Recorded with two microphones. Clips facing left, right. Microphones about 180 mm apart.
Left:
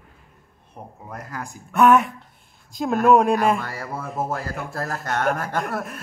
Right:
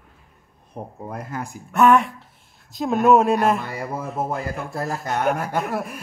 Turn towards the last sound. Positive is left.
turn(degrees=-5)  # may be behind; listen again after turning